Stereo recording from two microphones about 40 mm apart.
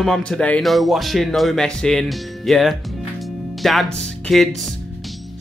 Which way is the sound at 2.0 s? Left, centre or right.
Centre.